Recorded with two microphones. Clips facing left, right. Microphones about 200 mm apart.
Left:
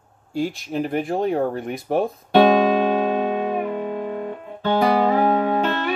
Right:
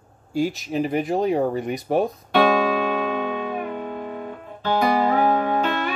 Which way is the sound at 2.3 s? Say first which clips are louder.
Left 4 dB; 35° left (ahead or behind).